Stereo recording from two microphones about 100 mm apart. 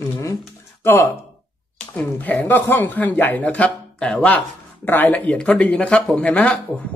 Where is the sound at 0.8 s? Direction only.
25° left (ahead or behind).